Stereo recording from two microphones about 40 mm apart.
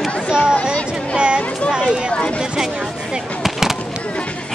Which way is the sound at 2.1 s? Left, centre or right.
Left.